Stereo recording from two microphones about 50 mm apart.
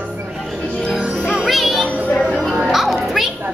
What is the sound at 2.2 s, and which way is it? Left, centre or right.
Music, centre.